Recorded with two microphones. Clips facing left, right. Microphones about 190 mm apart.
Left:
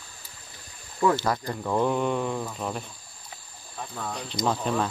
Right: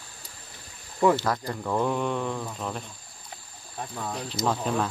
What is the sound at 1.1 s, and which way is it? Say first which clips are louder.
Speech: left 1 dB; centre (ahead or behind).